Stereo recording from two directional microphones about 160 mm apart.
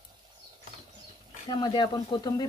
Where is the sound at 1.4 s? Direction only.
30° left (ahead or behind).